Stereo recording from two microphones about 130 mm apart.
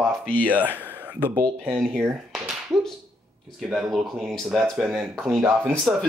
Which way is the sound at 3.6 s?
5° right (ahead or behind).